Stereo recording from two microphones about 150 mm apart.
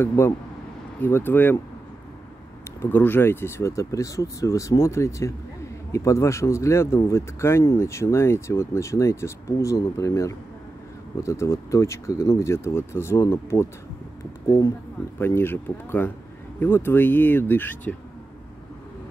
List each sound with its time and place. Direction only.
0.0 s speech: 15° left (ahead or behind)
2.8 s speech: 15° left (ahead or behind)
15.1 s speech: 15° left (ahead or behind)